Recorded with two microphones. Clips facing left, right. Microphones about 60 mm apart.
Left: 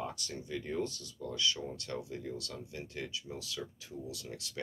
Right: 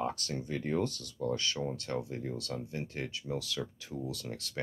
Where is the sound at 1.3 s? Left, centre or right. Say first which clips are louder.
Right 1 dB; right.